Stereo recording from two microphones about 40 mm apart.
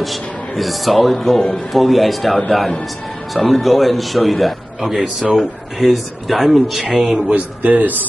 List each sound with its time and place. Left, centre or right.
0.0 s a man's voice: centre
7.2 s speech: right